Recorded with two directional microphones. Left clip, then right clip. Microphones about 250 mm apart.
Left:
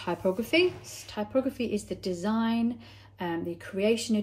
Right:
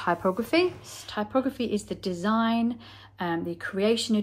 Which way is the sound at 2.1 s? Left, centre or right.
Right.